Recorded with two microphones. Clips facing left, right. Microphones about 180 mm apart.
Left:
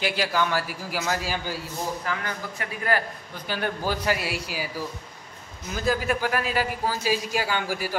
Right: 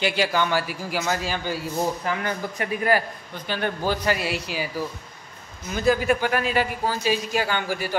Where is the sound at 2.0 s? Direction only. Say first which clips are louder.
Right 4 dB; 20° right (ahead or behind).